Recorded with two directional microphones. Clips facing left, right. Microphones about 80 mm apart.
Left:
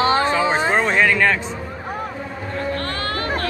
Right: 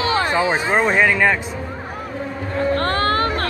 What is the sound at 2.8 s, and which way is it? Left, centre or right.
Music, right.